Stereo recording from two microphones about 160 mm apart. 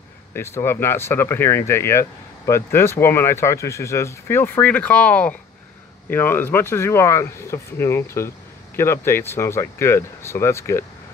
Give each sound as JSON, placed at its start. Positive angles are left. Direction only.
{"t": 0.3, "sound": "speech", "side_deg": 15}